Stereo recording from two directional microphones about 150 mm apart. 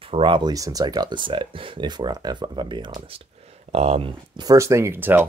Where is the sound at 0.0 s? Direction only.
35° right (ahead or behind).